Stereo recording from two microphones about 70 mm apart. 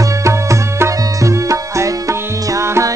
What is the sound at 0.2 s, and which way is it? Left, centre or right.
Tabla, right.